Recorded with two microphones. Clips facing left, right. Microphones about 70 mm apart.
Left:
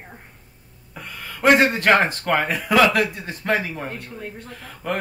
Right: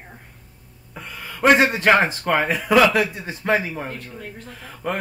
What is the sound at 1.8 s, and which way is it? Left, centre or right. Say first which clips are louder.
A man's voice: right 1 dB; centre.